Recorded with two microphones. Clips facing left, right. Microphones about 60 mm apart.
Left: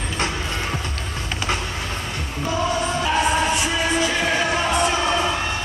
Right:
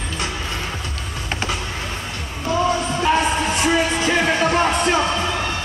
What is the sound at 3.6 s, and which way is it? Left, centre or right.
Music, right.